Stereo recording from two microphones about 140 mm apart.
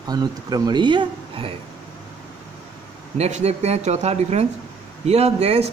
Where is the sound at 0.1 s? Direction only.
30° right (ahead or behind).